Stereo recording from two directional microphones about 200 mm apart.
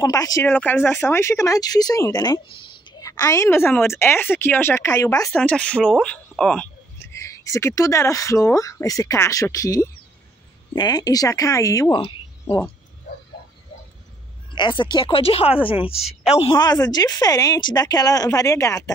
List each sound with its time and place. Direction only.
0.0 s speech: 15° left (ahead or behind)
5.3 s speech: 5° left (ahead or behind)
14.5 s a woman's voice: 25° left (ahead or behind)